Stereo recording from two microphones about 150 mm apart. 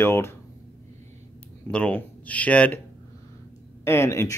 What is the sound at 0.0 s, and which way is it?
Speech, 15° left (ahead or behind).